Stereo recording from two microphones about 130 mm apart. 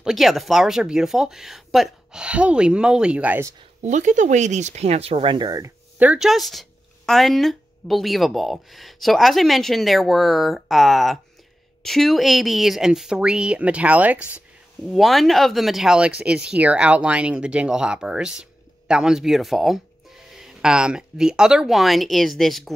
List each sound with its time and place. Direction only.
0.0 s speech: centre (ahead or behind)
3.8 s speech: 70° right (ahead or behind); by 5.6 s 35° right (ahead or behind)
5.9 s speech: 5° right (ahead or behind)
14.9 s speech: centre (ahead or behind)